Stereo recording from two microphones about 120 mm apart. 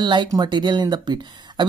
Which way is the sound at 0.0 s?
40° right (ahead or behind).